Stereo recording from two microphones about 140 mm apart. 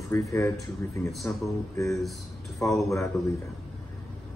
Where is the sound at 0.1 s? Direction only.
20° left (ahead or behind).